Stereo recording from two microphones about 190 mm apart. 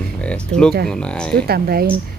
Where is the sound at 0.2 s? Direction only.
5° left (ahead or behind).